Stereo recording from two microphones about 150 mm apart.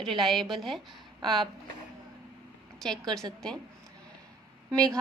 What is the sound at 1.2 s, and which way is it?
Speech, 30° right (ahead or behind).